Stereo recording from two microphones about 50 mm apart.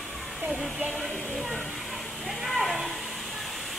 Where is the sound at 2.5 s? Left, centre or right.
Centre.